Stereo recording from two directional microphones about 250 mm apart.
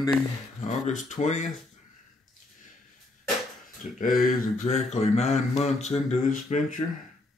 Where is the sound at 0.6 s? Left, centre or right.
Left.